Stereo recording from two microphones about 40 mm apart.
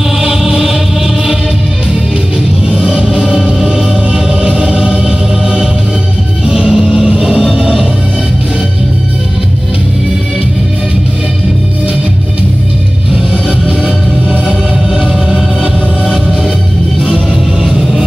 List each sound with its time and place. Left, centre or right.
0.2 s music: centre
2.7 s music: centre
13.3 s music: right